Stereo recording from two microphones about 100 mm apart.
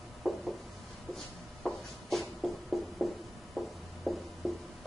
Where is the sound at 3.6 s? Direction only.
Centre (ahead or behind).